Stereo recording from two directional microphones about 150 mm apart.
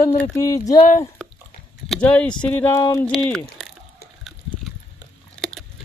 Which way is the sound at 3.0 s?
5° left (ahead or behind).